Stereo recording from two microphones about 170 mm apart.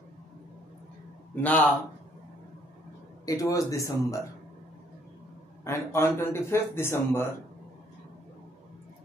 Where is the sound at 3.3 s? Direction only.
20° left (ahead or behind).